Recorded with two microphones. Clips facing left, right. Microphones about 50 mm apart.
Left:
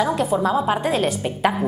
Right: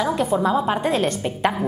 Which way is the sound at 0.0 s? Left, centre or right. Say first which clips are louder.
Even; centre.